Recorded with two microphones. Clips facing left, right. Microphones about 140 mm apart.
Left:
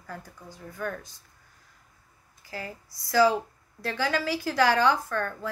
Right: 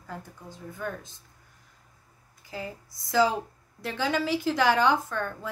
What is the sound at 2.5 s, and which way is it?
A woman's voice, 20° right (ahead or behind).